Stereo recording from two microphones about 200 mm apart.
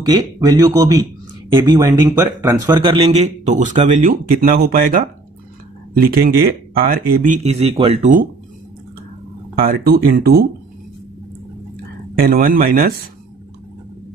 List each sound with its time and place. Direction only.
0.0 s speech: 20° right (ahead or behind); by 5.0 s 45° right (ahead or behind)
6.0 s speech: 50° right (ahead or behind)
7.4 s speech: 30° right (ahead or behind)
9.6 s speech: 50° right (ahead or behind)
12.2 s speech: 50° right (ahead or behind)